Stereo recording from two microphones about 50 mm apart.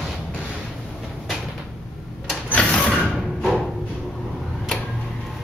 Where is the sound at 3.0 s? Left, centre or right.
Centre.